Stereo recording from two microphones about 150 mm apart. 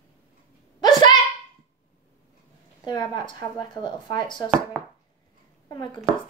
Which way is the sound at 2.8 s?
30° left (ahead or behind).